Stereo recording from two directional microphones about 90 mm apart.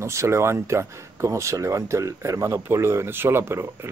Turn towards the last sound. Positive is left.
turn(degrees=-30)  # may be behind; listen again after turning